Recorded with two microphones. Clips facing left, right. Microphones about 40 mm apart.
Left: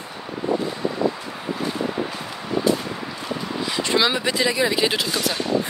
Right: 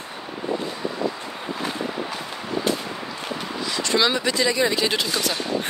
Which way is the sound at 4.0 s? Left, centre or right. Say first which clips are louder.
Even; centre.